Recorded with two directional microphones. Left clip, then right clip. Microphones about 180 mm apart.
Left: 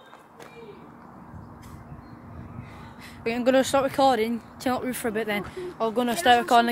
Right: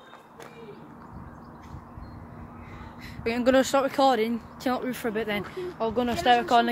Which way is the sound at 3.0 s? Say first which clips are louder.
Even; 5° left (ahead or behind).